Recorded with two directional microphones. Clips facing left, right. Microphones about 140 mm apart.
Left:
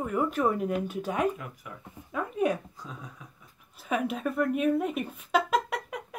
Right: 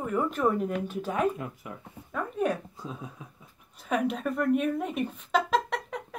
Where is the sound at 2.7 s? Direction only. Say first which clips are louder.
Right 4 dB; 25° right (ahead or behind).